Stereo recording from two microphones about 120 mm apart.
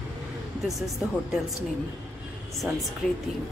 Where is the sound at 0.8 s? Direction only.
Centre (ahead or behind).